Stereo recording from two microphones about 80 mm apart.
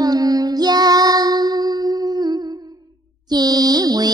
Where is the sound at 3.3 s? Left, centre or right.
Right.